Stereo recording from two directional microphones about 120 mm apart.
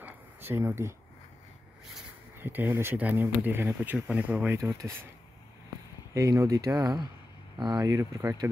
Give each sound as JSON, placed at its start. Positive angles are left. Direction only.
{"t": 0.0, "sound": "a sound", "side_deg": -20}
{"t": 2.4, "sound": "speech", "side_deg": -15}
{"t": 4.6, "sound": "speech", "side_deg": -30}
{"t": 6.1, "sound": "speech", "side_deg": -30}